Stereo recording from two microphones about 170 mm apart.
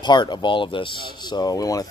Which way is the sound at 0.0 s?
25° left (ahead or behind).